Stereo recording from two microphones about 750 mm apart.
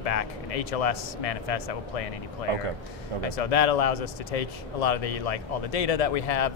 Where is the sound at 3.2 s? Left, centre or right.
Left.